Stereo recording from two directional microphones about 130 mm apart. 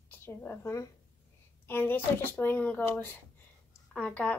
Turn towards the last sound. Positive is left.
turn(degrees=10)  # may be behind; listen again after turning